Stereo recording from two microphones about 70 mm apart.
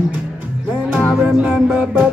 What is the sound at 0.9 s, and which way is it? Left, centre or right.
Music, centre.